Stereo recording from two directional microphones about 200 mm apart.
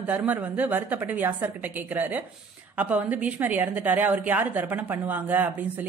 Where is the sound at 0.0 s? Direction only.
5° right (ahead or behind).